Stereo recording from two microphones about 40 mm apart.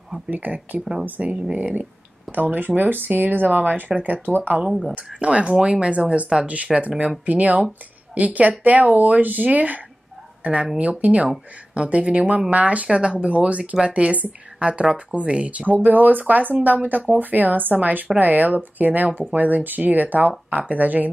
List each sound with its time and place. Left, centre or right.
0.3 s speech: right
0.7 s speech: centre
1.2 s speech: right
4.6 s speech: centre
4.9 s speech: right
10.4 s a woman's voice: right
20.4 s speech: right
20.7 s speech: right